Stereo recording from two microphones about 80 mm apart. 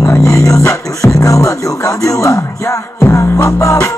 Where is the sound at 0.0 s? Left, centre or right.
Left.